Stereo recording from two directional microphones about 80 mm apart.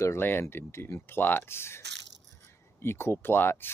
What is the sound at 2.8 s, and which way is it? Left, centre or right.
Speech, left.